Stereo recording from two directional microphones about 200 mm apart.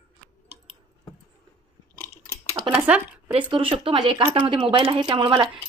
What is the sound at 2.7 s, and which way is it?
Speech, 5° right (ahead or behind).